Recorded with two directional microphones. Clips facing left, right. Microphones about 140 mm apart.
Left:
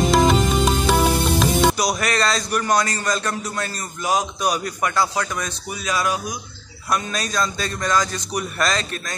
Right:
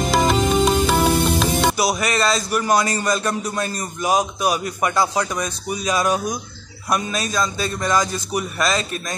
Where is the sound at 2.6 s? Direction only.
10° right (ahead or behind).